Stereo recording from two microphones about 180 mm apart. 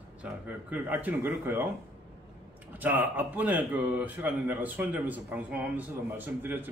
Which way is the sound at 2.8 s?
10° right (ahead or behind).